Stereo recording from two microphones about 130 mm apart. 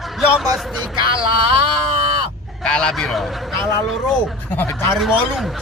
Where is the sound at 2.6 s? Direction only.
5° left (ahead or behind).